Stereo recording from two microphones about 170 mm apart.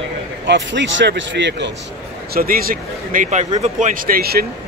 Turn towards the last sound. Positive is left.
turn(degrees=-65)  # may be behind; listen again after turning